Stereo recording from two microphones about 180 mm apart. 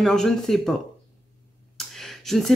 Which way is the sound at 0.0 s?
Centre (ahead or behind).